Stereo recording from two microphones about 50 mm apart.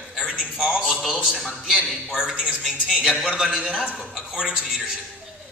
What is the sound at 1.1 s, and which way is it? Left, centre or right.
A man's voice, centre.